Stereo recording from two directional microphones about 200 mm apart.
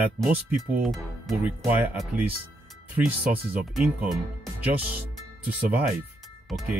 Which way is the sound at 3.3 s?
45° right (ahead or behind).